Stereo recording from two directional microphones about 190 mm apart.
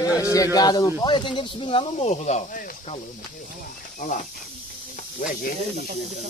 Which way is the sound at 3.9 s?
45° left (ahead or behind).